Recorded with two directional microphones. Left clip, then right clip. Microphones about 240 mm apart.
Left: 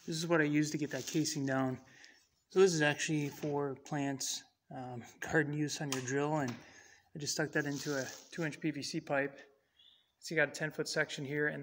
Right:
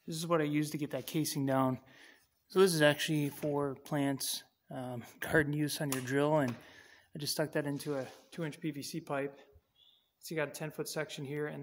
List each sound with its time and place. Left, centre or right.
0.1 s speech: centre